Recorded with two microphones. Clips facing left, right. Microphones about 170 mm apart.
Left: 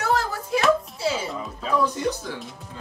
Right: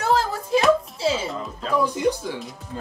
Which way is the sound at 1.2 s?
5° left (ahead or behind).